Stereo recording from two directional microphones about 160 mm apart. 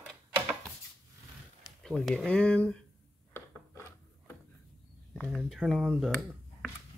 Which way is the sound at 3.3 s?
15° left (ahead or behind).